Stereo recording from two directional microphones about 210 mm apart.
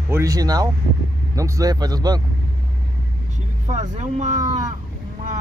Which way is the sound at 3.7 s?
35° right (ahead or behind).